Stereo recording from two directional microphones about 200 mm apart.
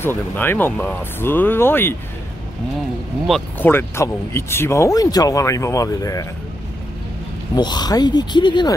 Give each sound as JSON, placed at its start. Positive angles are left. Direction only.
{"t": 0.0, "sound": "speech", "side_deg": 10}
{"t": 3.3, "sound": "speech", "side_deg": 5}
{"t": 7.5, "sound": "speech", "side_deg": 20}